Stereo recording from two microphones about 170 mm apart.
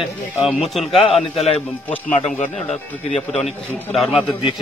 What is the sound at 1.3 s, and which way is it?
Speech, 40° left (ahead or behind).